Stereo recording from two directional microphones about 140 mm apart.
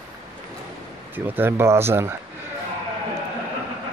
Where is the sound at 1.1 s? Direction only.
15° right (ahead or behind).